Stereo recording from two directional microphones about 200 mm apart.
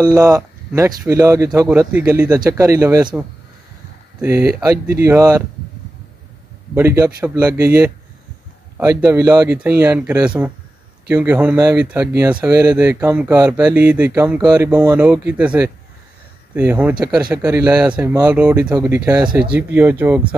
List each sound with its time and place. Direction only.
0.0 s speech: 20° right (ahead or behind)
4.2 s speech: 5° right (ahead or behind)
4.6 s speech: 15° right (ahead or behind)
6.7 s speech: 10° right (ahead or behind)
19.5 s speech: 10° right (ahead or behind)